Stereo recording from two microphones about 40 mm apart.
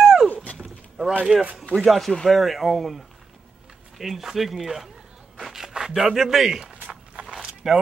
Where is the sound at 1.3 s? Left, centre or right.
Right.